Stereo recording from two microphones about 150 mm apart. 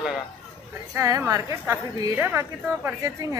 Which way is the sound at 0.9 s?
20° right (ahead or behind).